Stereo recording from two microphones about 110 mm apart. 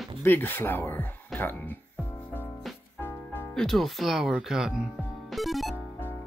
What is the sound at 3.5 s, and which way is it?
Speech, 5° left (ahead or behind).